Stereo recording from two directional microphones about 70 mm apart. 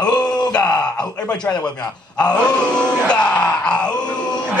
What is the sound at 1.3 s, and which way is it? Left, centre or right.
Speech, centre.